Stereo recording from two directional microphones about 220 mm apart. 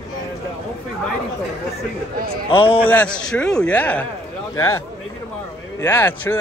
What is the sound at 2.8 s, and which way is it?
A man's voice, 5° left (ahead or behind).